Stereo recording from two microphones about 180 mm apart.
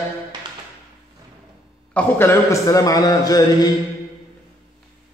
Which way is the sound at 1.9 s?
10° left (ahead or behind).